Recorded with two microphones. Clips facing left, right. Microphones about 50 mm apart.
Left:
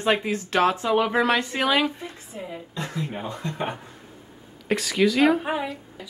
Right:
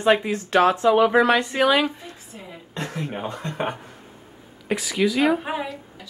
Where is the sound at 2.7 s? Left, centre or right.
Right.